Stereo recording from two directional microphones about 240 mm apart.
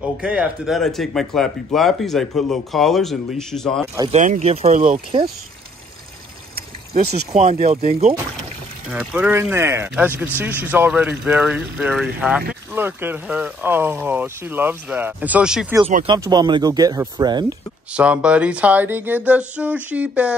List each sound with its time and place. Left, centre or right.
0.2 s speech: centre
4.1 s speech: right
6.5 s a sound: right
7.1 s speech: right
8.9 s speech: centre
16.1 s speech: centre
17.9 s speech: centre